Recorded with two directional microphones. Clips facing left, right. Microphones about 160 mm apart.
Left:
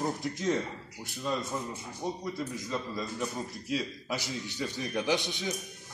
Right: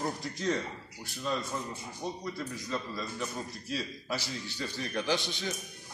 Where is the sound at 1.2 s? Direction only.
10° left (ahead or behind).